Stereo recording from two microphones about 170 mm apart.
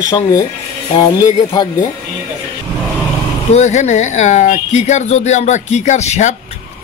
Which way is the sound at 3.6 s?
40° left (ahead or behind).